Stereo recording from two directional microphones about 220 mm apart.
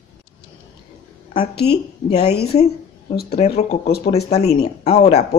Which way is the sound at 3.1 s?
45° left (ahead or behind).